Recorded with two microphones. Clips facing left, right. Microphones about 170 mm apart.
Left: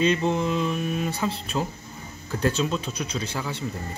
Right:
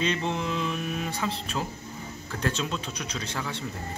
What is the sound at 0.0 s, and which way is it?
Speech, 5° left (ahead or behind).